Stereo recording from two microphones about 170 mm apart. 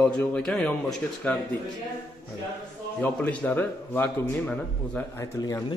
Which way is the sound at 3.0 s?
10° left (ahead or behind).